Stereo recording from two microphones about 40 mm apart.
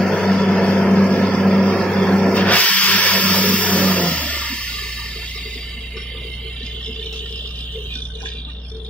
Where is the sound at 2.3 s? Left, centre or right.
Left.